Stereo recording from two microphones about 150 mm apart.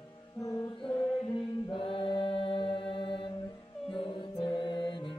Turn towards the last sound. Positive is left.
turn(degrees=30)  # may be behind; listen again after turning